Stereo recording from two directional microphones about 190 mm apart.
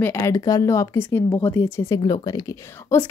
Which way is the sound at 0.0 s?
15° left (ahead or behind).